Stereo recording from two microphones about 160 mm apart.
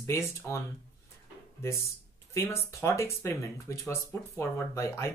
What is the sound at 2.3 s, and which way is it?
Speech, 15° left (ahead or behind).